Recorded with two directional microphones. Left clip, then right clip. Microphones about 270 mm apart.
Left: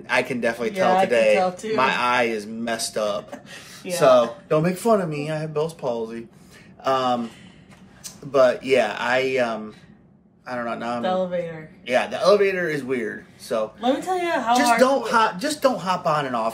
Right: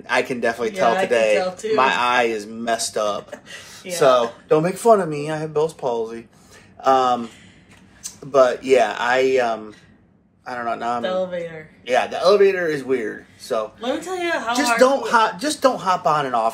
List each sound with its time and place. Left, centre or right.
0.0 s speech: centre
1.3 s a man's voice: left
1.8 s speech: centre
11.0 s a man's voice: centre
11.8 s speech: centre
13.8 s a man's voice: left
14.5 s speech: centre